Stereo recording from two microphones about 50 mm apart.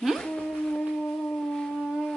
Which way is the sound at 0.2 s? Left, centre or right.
Centre.